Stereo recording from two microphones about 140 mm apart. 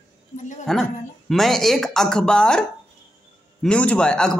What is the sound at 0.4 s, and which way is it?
Speech, 60° left (ahead or behind).